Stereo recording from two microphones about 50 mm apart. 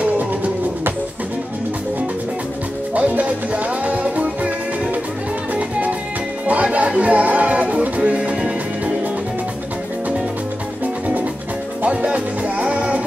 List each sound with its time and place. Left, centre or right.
0.0 s music: right
2.9 s music: right
5.5 s music: right
11.8 s music: right